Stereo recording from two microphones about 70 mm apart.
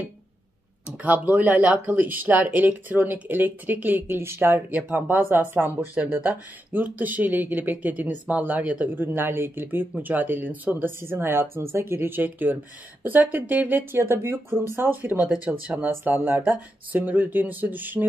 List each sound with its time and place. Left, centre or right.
0.8 s speech: right